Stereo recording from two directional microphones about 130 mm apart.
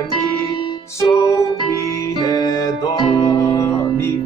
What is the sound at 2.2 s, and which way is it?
Music, 30° left (ahead or behind).